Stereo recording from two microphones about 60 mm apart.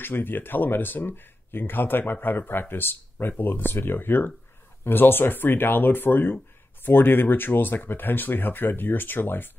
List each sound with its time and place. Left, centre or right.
0.0 s speech: left